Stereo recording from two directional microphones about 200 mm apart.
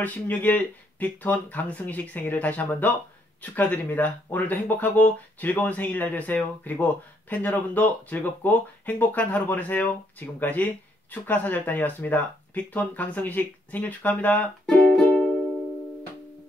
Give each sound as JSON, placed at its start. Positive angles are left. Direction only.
{"t": 0.0, "sound": "speech", "side_deg": 10}